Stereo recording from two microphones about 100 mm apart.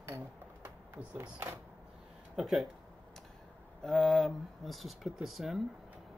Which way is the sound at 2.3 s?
Centre (ahead or behind).